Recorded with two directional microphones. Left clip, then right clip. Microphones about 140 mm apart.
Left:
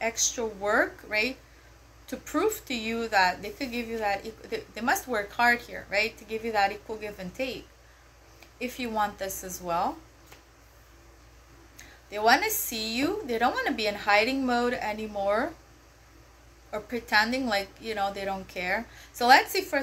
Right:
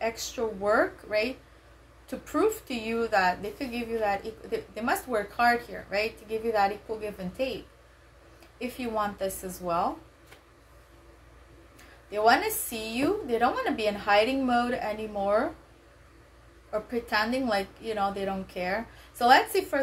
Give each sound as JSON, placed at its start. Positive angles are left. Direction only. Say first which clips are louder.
{"t": 0.7, "sound": "a woman's voice", "louder": "even", "side_deg": -15}
{"t": 8.5, "sound": "a woman's voice", "louder": "left 1 dB", "side_deg": -15}
{"t": 11.7, "sound": "a woman's voice", "louder": "right 3 dB", "side_deg": -15}
{"t": 16.9, "sound": "a woman's voice", "louder": "left 4 dB", "side_deg": -15}